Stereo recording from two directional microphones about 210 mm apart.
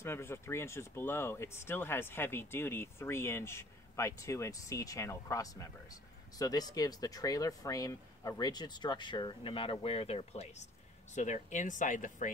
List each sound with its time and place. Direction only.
0.0 s speech: 10° left (ahead or behind); by 12.3 s 35° left (ahead or behind)